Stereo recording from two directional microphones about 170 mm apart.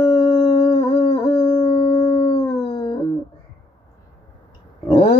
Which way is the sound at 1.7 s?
45° left (ahead or behind).